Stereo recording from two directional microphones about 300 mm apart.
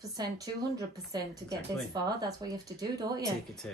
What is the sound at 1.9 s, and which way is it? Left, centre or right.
A woman's voice, centre.